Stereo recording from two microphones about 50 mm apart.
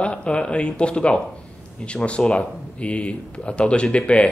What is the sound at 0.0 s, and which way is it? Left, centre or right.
Speech, left.